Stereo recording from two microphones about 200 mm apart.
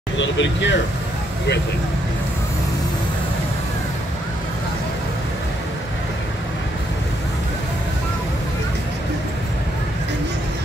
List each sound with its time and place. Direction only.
0.2 s speech: 65° left (ahead or behind)